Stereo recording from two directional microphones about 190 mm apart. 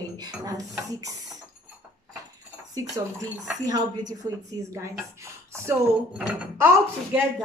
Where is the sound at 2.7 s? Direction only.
20° right (ahead or behind).